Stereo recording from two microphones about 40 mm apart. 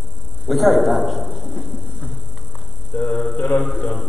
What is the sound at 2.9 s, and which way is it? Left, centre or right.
Mantra, left.